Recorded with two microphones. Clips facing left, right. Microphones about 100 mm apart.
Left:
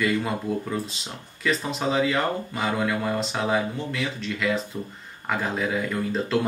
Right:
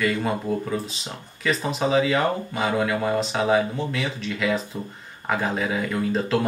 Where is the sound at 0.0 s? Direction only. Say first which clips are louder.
Right 1 dB; centre (ahead or behind).